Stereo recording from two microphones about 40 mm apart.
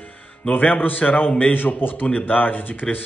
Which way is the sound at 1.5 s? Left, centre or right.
Left.